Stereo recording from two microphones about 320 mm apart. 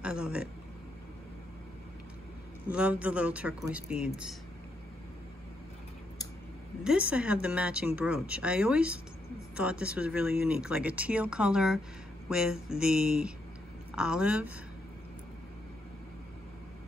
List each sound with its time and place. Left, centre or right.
0.0 s speech: centre
2.7 s speech: centre
6.8 s speech: centre